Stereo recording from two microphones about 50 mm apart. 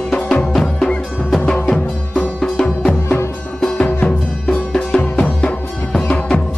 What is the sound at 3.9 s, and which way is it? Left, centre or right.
Music, left.